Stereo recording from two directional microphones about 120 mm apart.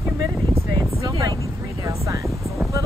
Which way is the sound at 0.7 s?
35° right (ahead or behind).